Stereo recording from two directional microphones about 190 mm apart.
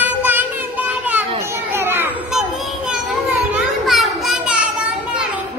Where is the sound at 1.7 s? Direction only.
10° right (ahead or behind).